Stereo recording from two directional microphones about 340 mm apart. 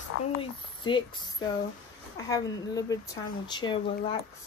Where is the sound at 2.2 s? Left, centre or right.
Centre.